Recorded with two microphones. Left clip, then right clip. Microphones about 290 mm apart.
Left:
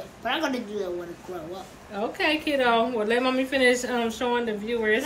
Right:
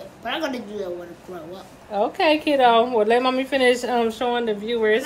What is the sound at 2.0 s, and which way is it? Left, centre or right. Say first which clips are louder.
A woman's voice: right 6 dB; centre.